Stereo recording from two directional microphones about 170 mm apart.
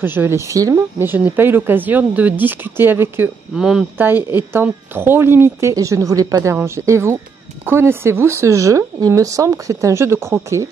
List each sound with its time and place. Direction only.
0.0 s speech: 10° right (ahead or behind)